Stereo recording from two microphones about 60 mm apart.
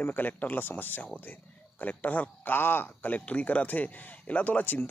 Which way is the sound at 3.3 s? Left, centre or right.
Left.